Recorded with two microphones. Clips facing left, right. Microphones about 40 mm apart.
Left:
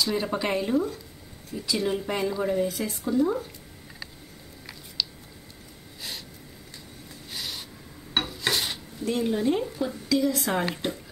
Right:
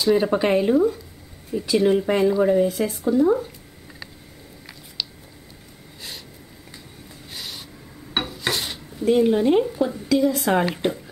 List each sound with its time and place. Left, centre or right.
0.0 s speech: centre
5.0 s a sound: centre
7.3 s a sound: centre
8.1 s filing: centre
9.0 s speech: centre
9.7 s speech: centre